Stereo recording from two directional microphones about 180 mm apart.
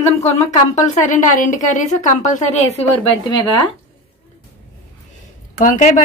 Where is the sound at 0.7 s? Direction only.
45° left (ahead or behind).